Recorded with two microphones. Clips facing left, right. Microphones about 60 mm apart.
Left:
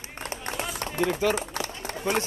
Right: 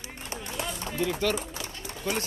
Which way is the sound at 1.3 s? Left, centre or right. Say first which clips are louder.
Left 4 dB; left.